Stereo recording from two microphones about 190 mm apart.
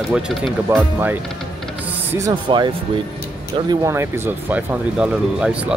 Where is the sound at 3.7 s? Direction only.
15° right (ahead or behind).